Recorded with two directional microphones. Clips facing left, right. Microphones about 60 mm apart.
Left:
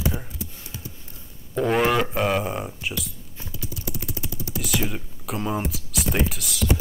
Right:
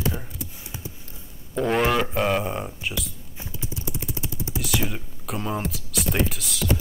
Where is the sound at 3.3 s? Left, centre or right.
Right.